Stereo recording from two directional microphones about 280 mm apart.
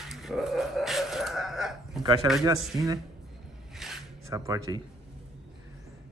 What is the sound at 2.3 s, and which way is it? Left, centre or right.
Speech, centre.